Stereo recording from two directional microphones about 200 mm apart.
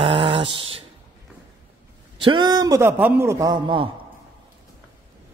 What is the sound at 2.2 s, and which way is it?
A man's voice, 20° right (ahead or behind).